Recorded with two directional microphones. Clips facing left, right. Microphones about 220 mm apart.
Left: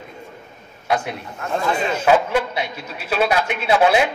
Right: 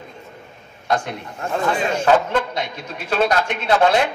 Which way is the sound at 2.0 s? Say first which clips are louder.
Left 1 dB; 10° left (ahead or behind).